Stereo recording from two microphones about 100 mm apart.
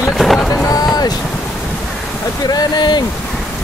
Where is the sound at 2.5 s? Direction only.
45° left (ahead or behind).